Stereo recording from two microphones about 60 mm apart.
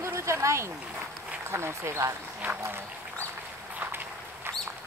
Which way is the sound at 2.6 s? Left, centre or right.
Right.